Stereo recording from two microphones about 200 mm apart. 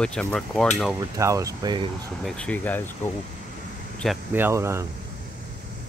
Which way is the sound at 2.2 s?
5° left (ahead or behind).